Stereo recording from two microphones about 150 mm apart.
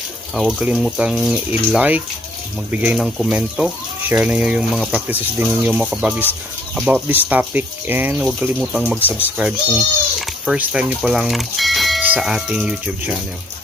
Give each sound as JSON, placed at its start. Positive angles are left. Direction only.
{"t": 0.3, "sound": "speech", "side_deg": -5}